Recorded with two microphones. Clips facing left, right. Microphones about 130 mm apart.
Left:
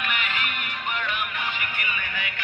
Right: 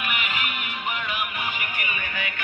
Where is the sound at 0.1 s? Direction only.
10° right (ahead or behind).